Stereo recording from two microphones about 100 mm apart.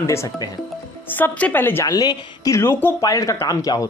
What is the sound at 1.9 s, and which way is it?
Speech, 40° left (ahead or behind).